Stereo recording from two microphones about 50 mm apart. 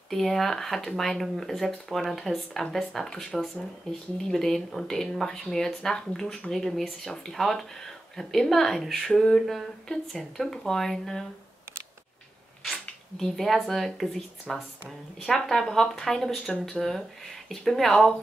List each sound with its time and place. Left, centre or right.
0.1 s speech: centre
13.2 s speech: centre